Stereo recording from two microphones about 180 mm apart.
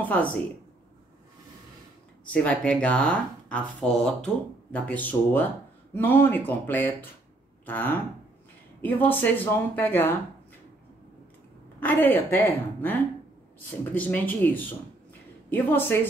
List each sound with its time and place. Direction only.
0.0 s a woman's voice: 10° left (ahead or behind)
2.2 s speech: 5° left (ahead or behind)
11.8 s speech: 10° left (ahead or behind)